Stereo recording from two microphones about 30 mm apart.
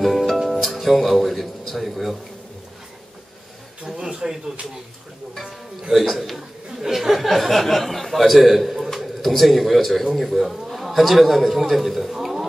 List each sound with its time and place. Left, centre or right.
0.0 s music: centre
0.5 s speech: centre
3.8 s speech: centre
5.4 s speech: centre
7.1 s a man's voice: centre